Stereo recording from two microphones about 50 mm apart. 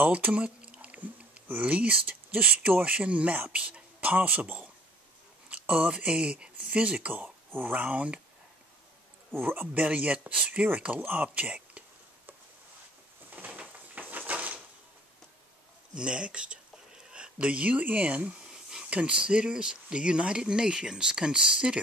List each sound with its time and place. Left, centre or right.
0.0 s speech: right
0.3 s a sound: right
2.0 s speech: right
9.3 s speech: right
9.8 s speech: right
13.3 s a sound: right
15.9 s speech: centre
18.5 s a sound: centre
18.9 s speech: right